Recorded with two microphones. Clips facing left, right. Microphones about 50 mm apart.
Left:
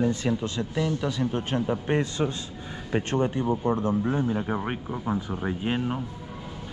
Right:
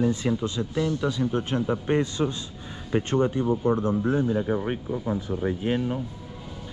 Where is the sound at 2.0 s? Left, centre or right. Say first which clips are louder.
Right 1 dB; left.